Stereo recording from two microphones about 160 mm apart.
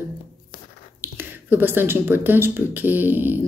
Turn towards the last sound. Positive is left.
turn(degrees=-10)  # may be behind; listen again after turning